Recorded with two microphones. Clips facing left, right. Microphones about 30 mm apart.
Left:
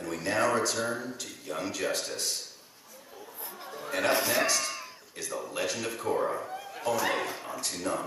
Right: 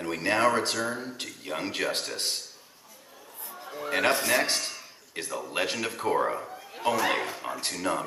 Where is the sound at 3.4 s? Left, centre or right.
Centre.